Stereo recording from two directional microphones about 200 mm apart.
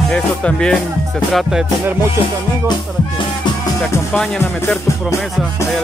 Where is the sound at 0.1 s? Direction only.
5° left (ahead or behind).